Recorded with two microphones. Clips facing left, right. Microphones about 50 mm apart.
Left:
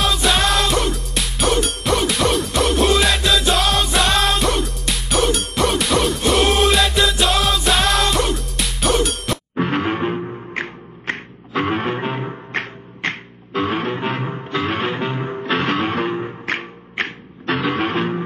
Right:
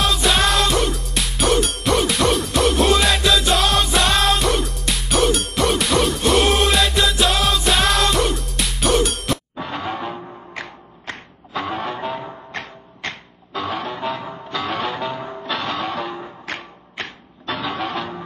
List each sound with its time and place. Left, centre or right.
0.0 s music: centre
9.6 s music: left